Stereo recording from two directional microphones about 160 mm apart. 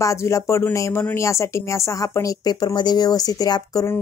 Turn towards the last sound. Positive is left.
turn(degrees=20)  # may be behind; listen again after turning